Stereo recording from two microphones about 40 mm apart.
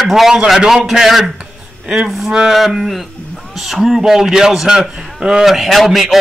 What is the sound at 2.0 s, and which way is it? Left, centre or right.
Speech, centre.